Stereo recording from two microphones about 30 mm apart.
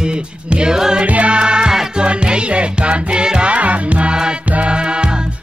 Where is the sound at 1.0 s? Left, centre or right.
Right.